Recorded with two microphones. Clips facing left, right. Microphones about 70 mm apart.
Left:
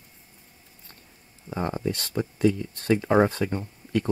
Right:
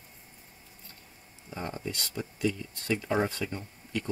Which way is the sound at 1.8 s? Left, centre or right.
Left.